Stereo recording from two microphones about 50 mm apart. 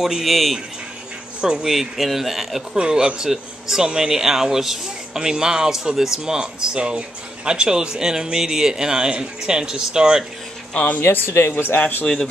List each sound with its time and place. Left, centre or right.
0.0 s speech: centre
1.4 s speech: centre
2.7 s speech: centre
10.7 s speech: left
11.0 s speech: left